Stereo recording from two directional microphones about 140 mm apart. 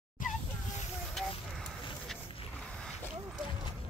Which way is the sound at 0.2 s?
70° left (ahead or behind).